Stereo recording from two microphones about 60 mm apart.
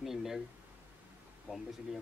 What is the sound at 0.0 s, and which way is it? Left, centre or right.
Speech, centre.